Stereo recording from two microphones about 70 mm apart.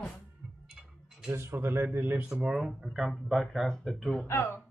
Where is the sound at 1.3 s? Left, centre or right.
Right.